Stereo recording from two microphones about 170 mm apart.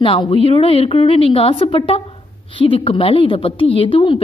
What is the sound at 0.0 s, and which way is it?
A woman's voice, 30° left (ahead or behind).